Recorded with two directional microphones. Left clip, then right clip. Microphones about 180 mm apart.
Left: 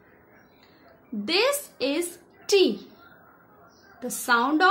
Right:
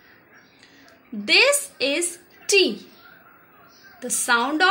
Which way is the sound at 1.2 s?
10° left (ahead or behind).